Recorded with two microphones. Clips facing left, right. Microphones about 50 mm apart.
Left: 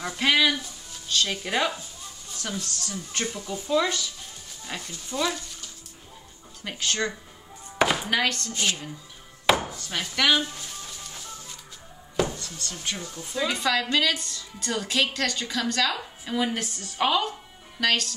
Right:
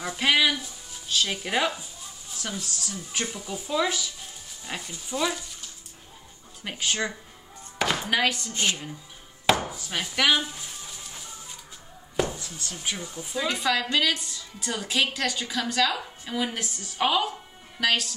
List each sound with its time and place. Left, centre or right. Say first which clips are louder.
0.0 s speech: even; centre
6.6 s speech: even; centre
7.8 s speech: left 1 dB; centre
9.6 s chopping: even; centre
12.2 s speech: left 1 dB; centre